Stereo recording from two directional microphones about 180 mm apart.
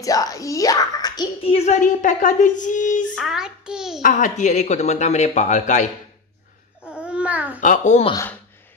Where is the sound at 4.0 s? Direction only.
45° left (ahead or behind).